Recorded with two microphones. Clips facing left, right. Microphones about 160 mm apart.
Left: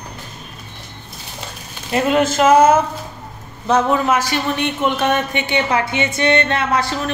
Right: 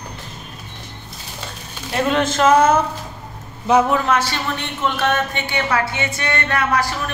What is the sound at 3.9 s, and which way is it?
A woman's voice, 10° left (ahead or behind).